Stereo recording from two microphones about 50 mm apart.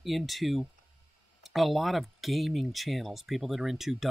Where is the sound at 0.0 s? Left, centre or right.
Centre.